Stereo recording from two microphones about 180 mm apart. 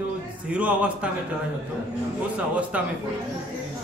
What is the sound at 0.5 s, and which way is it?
Speech, 5° right (ahead or behind).